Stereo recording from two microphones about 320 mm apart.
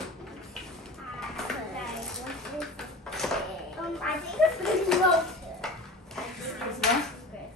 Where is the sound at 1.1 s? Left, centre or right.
Centre.